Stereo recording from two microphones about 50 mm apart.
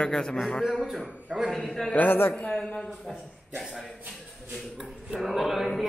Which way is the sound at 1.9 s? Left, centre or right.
Left.